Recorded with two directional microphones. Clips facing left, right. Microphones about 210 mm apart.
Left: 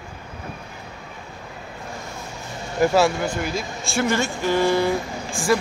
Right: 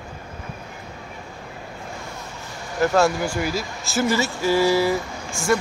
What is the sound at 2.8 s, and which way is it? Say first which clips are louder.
Speech: left 2 dB; 15° left (ahead or behind).